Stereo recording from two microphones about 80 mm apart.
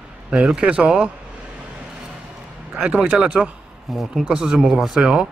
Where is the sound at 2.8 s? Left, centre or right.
Centre.